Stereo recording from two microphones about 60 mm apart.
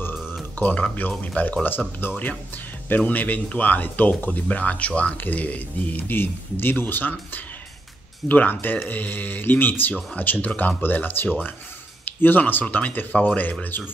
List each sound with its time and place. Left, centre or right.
0.6 s speech: left